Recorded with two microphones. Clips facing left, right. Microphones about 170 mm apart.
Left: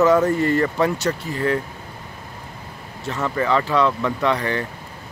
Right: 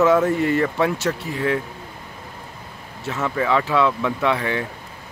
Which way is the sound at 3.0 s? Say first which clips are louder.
Even; centre (ahead or behind).